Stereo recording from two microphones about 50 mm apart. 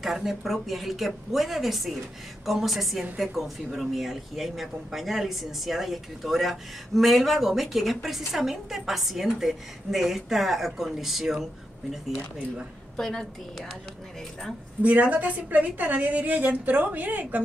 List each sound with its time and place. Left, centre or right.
0.0 s speech: centre
12.9 s a woman's voice: centre
14.8 s a woman's voice: right